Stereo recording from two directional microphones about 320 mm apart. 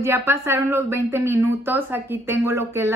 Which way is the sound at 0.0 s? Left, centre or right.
Centre.